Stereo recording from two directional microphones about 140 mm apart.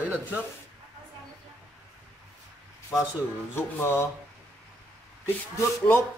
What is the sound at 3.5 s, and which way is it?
Speech, 15° left (ahead or behind).